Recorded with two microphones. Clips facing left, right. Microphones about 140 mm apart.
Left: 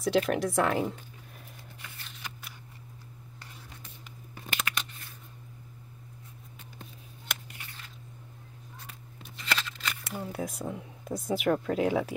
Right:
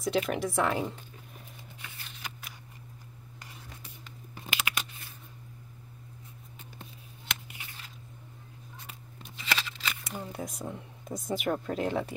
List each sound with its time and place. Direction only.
0.0 s speech: centre (ahead or behind)
1.8 s scissors: centre (ahead or behind)
4.7 s a sound: 15° right (ahead or behind)
7.5 s scissors: 5° right (ahead or behind)
9.4 s shuffling cards: 5° right (ahead or behind)